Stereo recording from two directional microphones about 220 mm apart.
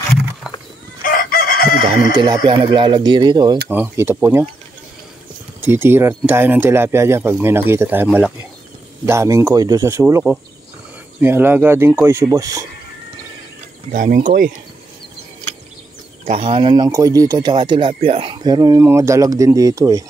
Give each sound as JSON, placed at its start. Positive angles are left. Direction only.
{"t": 0.5, "sound": "a sound", "side_deg": -5}
{"t": 1.0, "sound": "chicken", "side_deg": 40}
{"t": 2.1, "sound": "speech", "side_deg": -20}
{"t": 5.6, "sound": "speech", "side_deg": -10}
{"t": 13.9, "sound": "speech", "side_deg": -35}
{"t": 16.3, "sound": "speech", "side_deg": -25}